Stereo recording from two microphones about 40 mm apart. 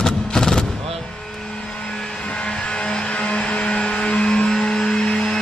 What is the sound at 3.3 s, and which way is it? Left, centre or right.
Vehicle, left.